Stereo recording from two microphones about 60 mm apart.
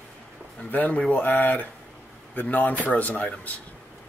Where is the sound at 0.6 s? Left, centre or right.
Left.